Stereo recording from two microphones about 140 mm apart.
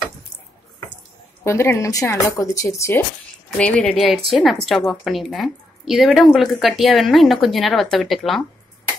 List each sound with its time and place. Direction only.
1.4 s a woman's voice: 20° left (ahead or behind)
3.5 s a woman's voice: 10° left (ahead or behind)